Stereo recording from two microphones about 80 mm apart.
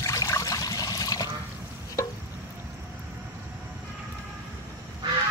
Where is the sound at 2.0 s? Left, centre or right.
Left.